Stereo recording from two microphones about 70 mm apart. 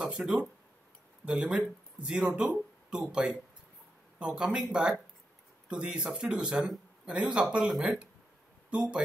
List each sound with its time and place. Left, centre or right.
0.0 s speech: centre